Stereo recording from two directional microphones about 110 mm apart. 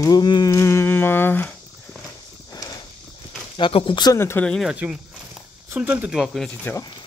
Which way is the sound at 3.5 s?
50° left (ahead or behind).